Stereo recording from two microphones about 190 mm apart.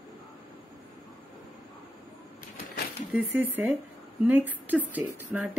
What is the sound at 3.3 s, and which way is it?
Speech, 10° right (ahead or behind).